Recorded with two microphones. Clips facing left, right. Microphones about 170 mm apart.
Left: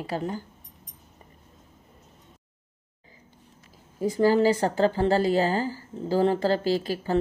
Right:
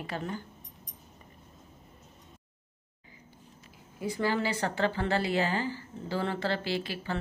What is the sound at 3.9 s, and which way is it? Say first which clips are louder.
A woman's voice: left 9 dB; 40° left (ahead or behind).